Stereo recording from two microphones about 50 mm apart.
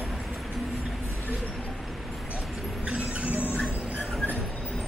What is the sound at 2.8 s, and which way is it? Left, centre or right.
Vehicle, right.